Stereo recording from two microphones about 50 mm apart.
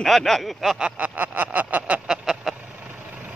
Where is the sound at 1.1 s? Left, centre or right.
Right.